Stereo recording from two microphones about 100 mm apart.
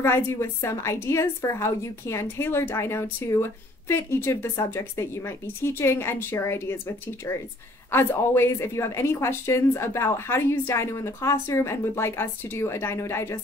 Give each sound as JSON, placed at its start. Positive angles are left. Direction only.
{"t": 0.0, "sound": "a woman's voice", "side_deg": 25}
{"t": 7.9, "sound": "a woman's voice", "side_deg": 25}